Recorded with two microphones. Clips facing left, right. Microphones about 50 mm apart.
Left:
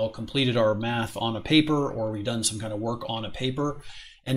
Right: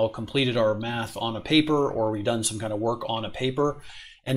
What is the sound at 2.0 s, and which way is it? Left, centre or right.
Speech, centre.